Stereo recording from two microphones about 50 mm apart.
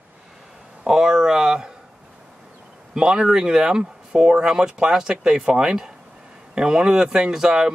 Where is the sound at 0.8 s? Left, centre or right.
Centre.